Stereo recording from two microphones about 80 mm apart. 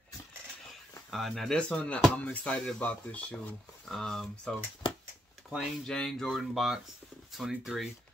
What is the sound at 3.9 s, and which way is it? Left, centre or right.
Speech, centre.